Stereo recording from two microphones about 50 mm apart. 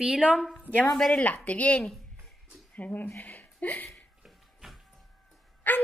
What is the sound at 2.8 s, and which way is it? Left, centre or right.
A woman's voice, left.